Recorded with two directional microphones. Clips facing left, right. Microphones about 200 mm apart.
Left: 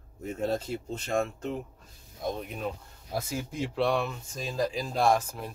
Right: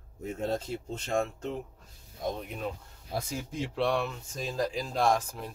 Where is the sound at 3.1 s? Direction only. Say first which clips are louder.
Left 1 dB; 5° left (ahead or behind).